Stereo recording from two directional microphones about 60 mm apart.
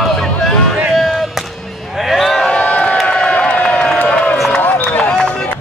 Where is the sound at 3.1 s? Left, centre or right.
Centre.